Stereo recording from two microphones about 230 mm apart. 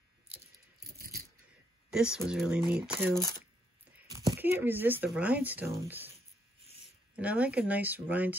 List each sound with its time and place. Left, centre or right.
0.9 s rattle: right
1.9 s speech: centre
7.2 s speech: centre